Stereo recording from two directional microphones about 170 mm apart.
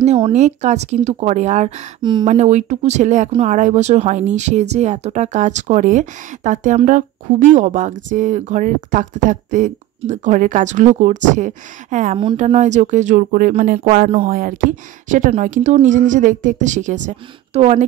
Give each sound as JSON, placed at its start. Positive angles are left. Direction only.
{"t": 0.0, "sound": "speech", "side_deg": -40}